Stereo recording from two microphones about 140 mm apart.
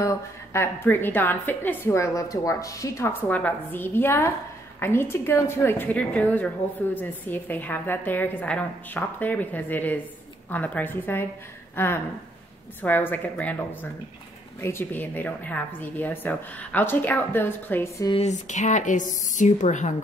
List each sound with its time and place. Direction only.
0.0 s a woman's voice: 20° left (ahead or behind)
11.7 s a sound: 15° left (ahead or behind)
12.8 s a woman's voice: 15° left (ahead or behind)
14.6 s a woman's voice: 15° left (ahead or behind)
18.1 s speech: 55° left (ahead or behind)